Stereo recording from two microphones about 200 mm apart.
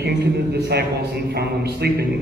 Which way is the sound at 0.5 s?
55° right (ahead or behind).